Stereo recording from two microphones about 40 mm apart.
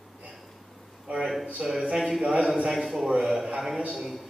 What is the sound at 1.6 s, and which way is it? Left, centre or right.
Speech, centre.